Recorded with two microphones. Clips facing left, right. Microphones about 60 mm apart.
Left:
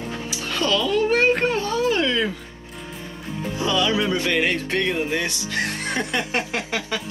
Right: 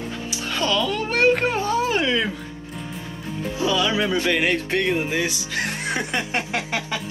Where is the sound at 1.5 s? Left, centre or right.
Right.